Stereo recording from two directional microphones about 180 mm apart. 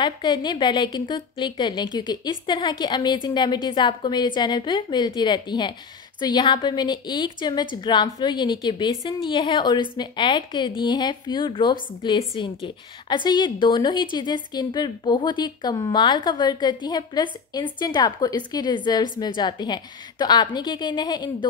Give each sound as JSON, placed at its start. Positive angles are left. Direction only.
{"t": 0.0, "sound": "speech", "side_deg": 25}